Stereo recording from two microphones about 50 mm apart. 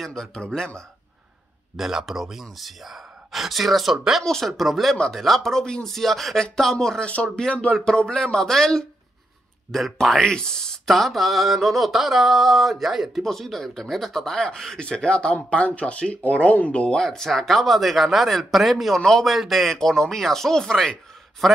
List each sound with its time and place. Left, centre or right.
0.0 s a man's voice: centre
1.8 s speech: centre
4.2 s a man's voice: centre
4.5 s a man's voice: centre
7.0 s a man's voice: left; by 10.1 s centre
10.1 s a man's voice: centre
11.0 s speech: centre; by 16.8 s left
16.8 s speech: centre
18.9 s a man's voice: centre
19.2 s a man's voice: centre